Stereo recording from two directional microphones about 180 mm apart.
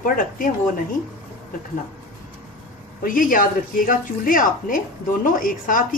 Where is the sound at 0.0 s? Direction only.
50° left (ahead or behind).